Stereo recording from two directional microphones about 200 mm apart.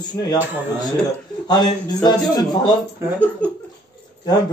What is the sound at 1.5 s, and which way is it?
Speech, 20° left (ahead or behind).